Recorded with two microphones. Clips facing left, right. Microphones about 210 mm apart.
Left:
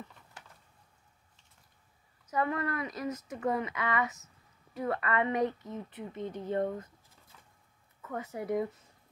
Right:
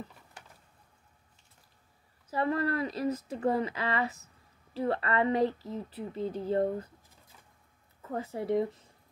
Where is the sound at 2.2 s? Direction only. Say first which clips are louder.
Right 2 dB; 30° right (ahead or behind).